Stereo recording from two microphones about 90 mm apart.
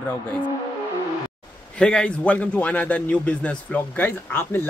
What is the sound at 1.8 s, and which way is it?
A man's voice, 10° left (ahead or behind).